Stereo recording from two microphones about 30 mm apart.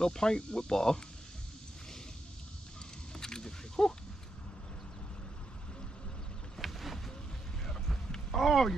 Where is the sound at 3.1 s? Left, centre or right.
Centre.